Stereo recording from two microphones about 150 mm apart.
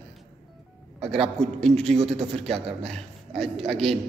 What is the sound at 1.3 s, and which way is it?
Speech, 5° left (ahead or behind).